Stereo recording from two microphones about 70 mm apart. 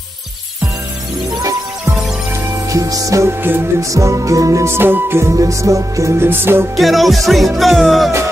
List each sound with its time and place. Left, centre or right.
2.7 s music: right
3.3 s music: right
3.9 s music: right
4.7 s music: right
5.3 s music: right
6.8 s music: centre